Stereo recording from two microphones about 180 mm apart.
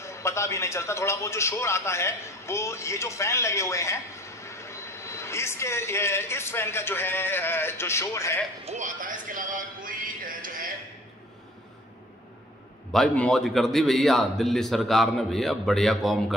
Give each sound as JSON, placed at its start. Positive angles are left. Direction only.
{"t": 0.0, "sound": "a man's voice", "side_deg": 15}
{"t": 8.6, "sound": "speech", "side_deg": -45}
{"t": 12.9, "sound": "a man's voice", "side_deg": 5}